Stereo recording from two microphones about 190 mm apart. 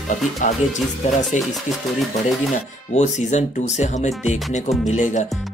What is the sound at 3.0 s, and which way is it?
Speech, 35° left (ahead or behind).